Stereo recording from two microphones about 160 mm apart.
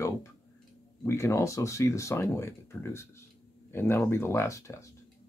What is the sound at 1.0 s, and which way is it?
Speech, 15° left (ahead or behind).